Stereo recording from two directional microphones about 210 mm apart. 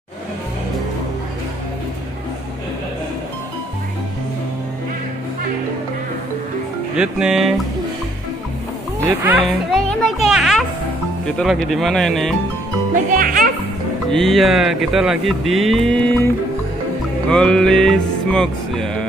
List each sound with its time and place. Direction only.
7.0 s speech: 5° right (ahead or behind)
9.0 s speech: 10° right (ahead or behind)
10.2 s music: centre (ahead or behind)
11.2 s speech: centre (ahead or behind)
13.1 s speech: 40° right (ahead or behind)
14.1 s speech: centre (ahead or behind)
17.3 s speech: 5° left (ahead or behind)